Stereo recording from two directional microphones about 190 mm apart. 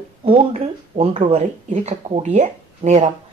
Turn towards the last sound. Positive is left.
turn(degrees=-40)  # may be behind; listen again after turning